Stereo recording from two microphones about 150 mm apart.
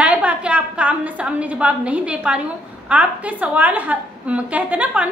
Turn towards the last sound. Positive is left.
turn(degrees=-10)  # may be behind; listen again after turning